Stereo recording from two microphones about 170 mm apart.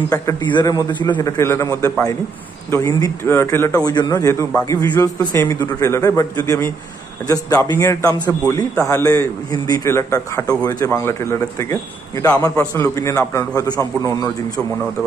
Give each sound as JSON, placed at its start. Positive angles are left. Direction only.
{"t": 0.1, "sound": "a man's voice", "side_deg": 20}